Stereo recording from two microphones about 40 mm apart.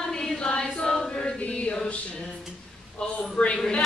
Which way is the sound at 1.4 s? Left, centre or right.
Left.